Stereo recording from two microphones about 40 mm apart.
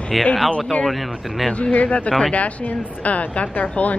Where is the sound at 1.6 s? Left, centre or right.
Left.